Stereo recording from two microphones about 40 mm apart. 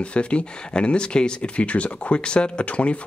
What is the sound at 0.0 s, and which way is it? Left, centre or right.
Speech, left.